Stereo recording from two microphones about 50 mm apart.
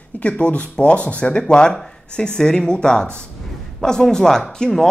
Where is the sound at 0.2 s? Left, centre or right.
Left.